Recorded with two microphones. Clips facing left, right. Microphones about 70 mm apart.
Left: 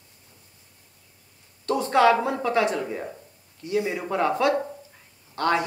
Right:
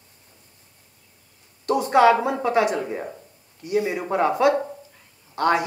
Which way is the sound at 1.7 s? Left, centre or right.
Centre.